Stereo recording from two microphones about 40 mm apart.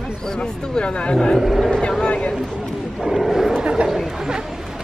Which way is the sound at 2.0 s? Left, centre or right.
Left.